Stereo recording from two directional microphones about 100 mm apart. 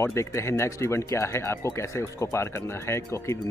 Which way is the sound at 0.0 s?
30° left (ahead or behind).